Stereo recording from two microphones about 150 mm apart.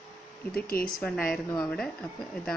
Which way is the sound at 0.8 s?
5° left (ahead or behind).